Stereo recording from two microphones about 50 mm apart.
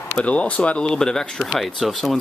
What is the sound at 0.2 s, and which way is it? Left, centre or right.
Speech, left.